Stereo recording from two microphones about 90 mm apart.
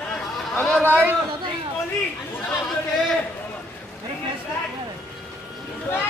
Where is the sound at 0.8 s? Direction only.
25° right (ahead or behind).